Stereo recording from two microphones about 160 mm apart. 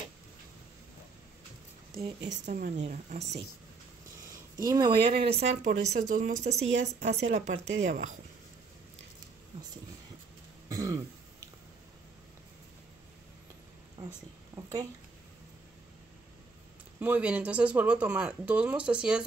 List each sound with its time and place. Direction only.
2.4 s a woman's voice: 55° right (ahead or behind)
4.2 s speech: 20° right (ahead or behind); by 5.5 s 35° right (ahead or behind)
5.6 s speech: 55° right (ahead or behind)
10.7 s throat clearing: 20° right (ahead or behind)
14.5 s a sound: 25° right (ahead or behind)
17.0 s speech: 10° right (ahead or behind)